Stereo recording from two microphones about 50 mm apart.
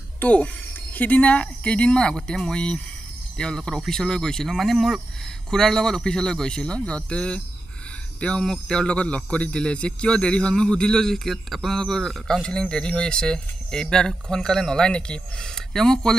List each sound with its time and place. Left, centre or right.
0.2 s a man's voice: left; by 4.5 s centre
4.5 s a man's voice: centre
8.8 s a man's voice: left